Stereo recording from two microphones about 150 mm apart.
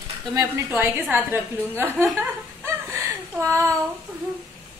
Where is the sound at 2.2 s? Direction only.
20° right (ahead or behind).